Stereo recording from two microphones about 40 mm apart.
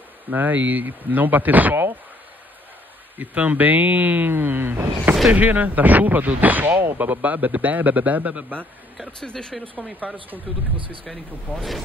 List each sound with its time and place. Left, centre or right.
0.3 s a man's voice: right
3.2 s a man's voice: right
4.3 s a sound: right
5.3 s a man's voice: right
9.2 s speech: centre
9.9 s a man's voice: right
11.1 s speech: centre